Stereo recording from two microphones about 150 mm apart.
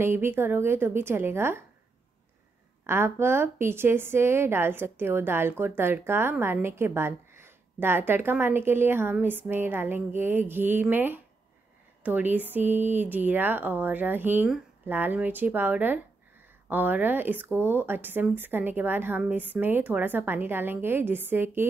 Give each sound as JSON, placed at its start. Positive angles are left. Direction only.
{"t": 0.0, "sound": "a woman's voice", "side_deg": -15}
{"t": 2.9, "sound": "a woman's voice", "side_deg": -15}